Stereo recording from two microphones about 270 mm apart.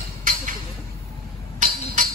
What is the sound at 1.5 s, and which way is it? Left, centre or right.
Music, right.